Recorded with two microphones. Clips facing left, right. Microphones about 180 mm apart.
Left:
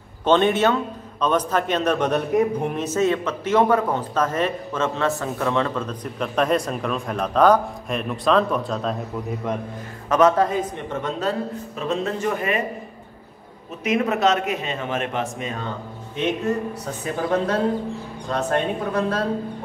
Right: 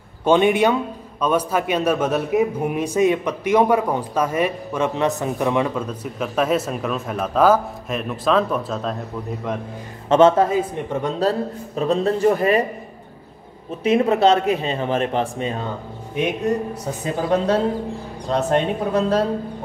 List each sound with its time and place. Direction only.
0.2 s a man's voice: 10° right (ahead or behind)
10.0 s speech: 25° right (ahead or behind)
13.8 s speech: 30° right (ahead or behind)
16.2 s speech: 15° right (ahead or behind)